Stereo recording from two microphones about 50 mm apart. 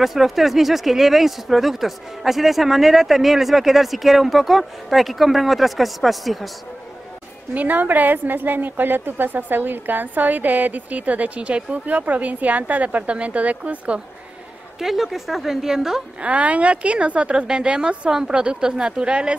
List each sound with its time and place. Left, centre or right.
0.0 s speech: centre
7.5 s a woman's voice: right
14.8 s a woman's voice: centre
16.2 s speech: right